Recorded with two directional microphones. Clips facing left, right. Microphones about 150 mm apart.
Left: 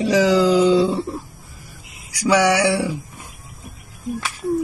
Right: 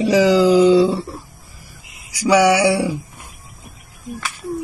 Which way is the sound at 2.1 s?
5° right (ahead or behind).